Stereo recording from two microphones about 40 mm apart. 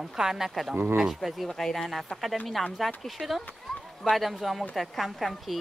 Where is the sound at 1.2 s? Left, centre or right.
Centre.